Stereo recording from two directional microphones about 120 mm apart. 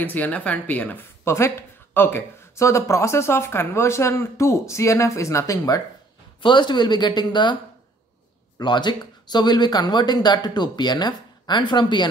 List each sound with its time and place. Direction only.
0.0 s a woman's voice: 15° left (ahead or behind)
6.4 s speech: 40° left (ahead or behind)
8.5 s speech: 40° left (ahead or behind)